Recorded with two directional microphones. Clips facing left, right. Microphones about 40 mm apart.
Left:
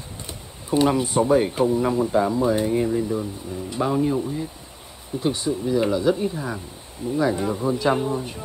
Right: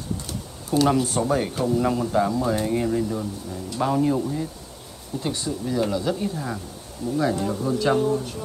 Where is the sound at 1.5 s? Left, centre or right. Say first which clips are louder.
Left 2 dB; left.